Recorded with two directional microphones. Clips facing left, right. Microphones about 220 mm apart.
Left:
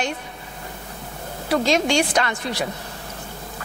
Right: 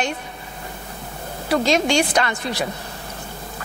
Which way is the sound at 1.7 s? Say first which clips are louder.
Right 1 dB; 15° right (ahead or behind).